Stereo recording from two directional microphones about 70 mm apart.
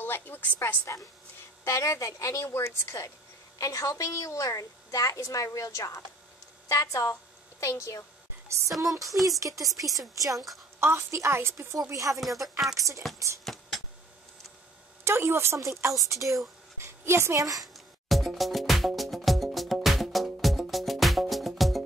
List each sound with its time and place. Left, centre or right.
0.0 s a woman's voice: left
1.6 s a woman's voice: left
3.5 s a woman's voice: left
8.8 s a woman's voice: right
10.8 s a woman's voice: right
11.9 s a woman's voice: right
12.2 s speech: centre
12.7 s a woman's voice: right
13.4 s a sound: centre
15.0 s a woman's voice: right
16.8 s speech: right
17.4 s speech: right
17.7 s music: centre